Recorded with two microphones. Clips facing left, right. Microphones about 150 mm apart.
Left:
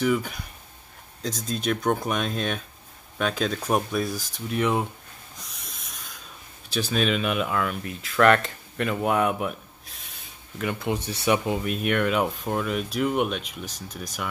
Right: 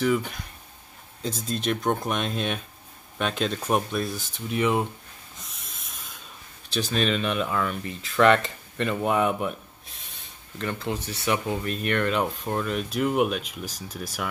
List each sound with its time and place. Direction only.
0.0 s speech: centre (ahead or behind)
5.4 s snort: centre (ahead or behind)
6.7 s speech: 5° left (ahead or behind)
10.6 s speech: 10° left (ahead or behind)
11.6 s speech: 5° left (ahead or behind)